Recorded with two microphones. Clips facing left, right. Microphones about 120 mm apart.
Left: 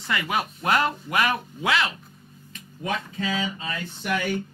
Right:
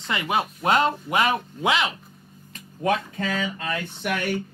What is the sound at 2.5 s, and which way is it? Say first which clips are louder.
Speech: right 6 dB; 50° right (ahead or behind).